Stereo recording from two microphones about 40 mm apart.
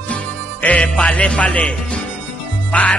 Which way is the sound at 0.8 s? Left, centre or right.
Left.